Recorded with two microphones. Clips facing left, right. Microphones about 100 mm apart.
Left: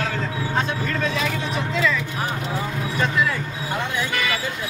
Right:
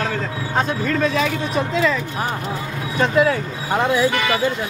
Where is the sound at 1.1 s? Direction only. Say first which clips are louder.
Right 5 dB; 50° right (ahead or behind).